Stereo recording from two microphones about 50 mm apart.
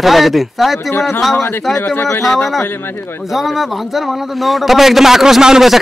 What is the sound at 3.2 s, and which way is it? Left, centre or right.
A man's voice, centre.